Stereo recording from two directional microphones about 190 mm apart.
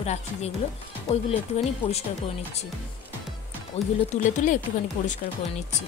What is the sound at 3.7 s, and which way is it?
Speech, 35° left (ahead or behind).